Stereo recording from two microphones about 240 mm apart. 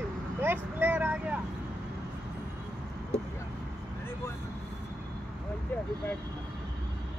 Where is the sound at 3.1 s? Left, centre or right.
Left.